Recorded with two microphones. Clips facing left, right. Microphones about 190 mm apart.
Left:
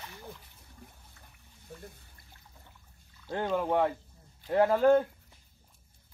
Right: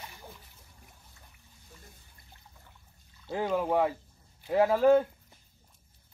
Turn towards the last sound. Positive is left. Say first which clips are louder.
# right 1 dB
turn(degrees=0)  # may be behind; listen again after turning